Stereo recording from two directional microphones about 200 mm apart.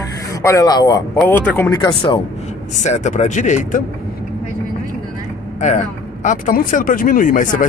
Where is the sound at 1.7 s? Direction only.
20° left (ahead or behind).